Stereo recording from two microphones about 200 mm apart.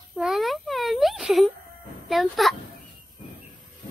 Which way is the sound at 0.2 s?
Centre (ahead or behind).